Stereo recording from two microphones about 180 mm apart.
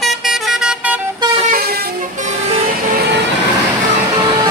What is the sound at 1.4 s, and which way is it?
Vehicle, 55° right (ahead or behind).